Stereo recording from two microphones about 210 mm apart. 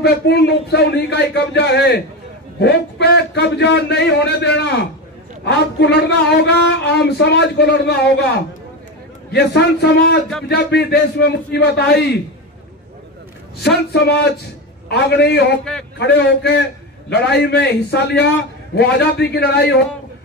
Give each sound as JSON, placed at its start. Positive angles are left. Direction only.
{"t": 0.0, "sound": "speech", "side_deg": 50}
{"t": 9.3, "sound": "speech", "side_deg": 50}
{"t": 13.6, "sound": "speech", "side_deg": 50}